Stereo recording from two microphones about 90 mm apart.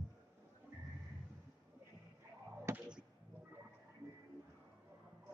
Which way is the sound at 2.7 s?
30° right (ahead or behind).